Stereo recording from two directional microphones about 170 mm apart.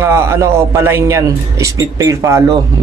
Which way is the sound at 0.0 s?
15° right (ahead or behind).